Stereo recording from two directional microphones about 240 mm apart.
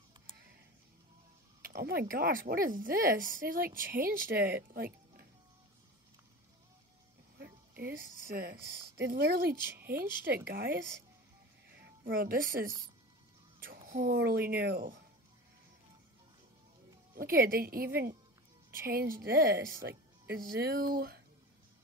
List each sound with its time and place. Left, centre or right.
1.6 s speech: right
7.3 s speech: right
11.8 s a woman's voice: right
17.1 s a woman's voice: right